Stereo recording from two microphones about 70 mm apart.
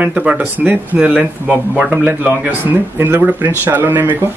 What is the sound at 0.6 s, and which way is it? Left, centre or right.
Speech, centre.